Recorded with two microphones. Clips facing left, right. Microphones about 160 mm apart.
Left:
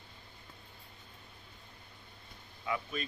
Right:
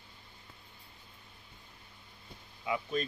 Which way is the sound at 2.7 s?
20° right (ahead or behind).